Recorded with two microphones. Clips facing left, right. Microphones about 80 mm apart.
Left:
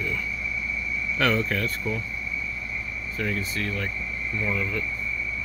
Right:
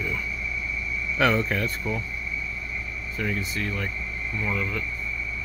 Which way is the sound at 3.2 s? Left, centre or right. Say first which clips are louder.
Even; centre.